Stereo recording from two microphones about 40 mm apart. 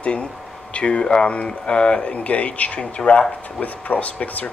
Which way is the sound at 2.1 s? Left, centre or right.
Left.